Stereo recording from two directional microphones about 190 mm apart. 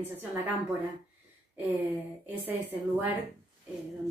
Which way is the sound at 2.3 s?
10° right (ahead or behind).